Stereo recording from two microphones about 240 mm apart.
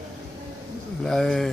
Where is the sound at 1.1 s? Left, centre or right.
Centre.